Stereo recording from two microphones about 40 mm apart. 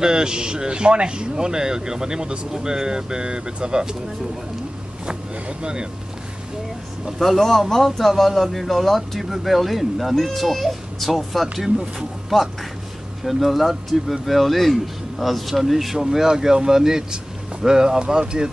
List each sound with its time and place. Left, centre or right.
0.0 s speech: centre
5.0 s speech: right
7.2 s a man's voice: centre